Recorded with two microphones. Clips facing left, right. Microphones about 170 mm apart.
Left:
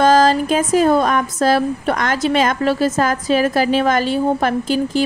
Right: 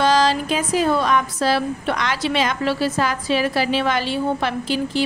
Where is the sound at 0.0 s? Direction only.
50° left (ahead or behind).